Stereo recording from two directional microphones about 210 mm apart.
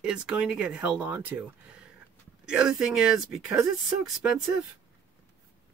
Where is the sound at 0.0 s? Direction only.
5° right (ahead or behind).